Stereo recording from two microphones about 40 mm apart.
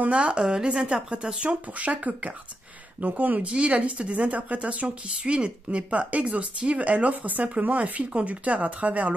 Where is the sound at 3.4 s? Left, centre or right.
Right.